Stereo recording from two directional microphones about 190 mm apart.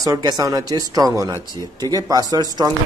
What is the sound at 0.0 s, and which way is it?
Speech, 20° right (ahead or behind).